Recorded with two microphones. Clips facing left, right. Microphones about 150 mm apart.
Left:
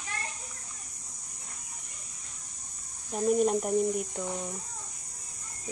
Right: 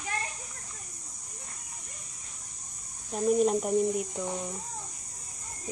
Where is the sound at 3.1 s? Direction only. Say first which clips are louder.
Right 1 dB; centre (ahead or behind).